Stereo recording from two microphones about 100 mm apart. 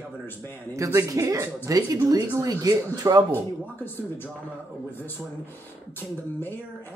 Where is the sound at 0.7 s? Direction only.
30° right (ahead or behind).